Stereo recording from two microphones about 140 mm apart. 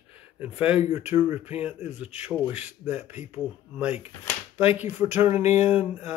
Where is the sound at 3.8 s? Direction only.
10° right (ahead or behind).